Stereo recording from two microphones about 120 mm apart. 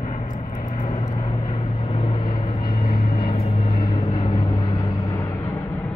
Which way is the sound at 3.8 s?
40° left (ahead or behind).